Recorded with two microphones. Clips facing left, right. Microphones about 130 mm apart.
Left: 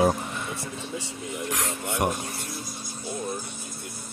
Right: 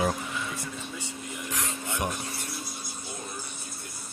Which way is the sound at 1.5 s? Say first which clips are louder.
Left 2 dB; 80° left.